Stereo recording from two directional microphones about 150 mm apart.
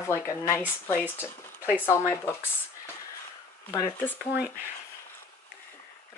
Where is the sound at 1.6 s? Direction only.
10° right (ahead or behind).